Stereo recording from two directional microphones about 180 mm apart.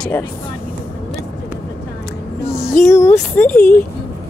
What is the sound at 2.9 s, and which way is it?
Speech, 15° left (ahead or behind).